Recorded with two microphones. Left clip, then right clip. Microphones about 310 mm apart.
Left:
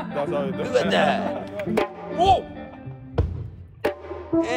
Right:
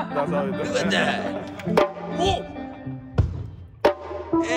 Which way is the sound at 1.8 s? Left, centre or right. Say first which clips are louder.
Right 5 dB; centre.